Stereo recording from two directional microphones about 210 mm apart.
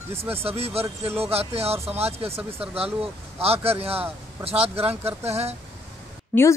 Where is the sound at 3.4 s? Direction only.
30° right (ahead or behind).